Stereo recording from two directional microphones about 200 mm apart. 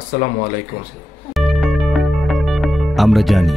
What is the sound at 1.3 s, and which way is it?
Music, centre (ahead or behind).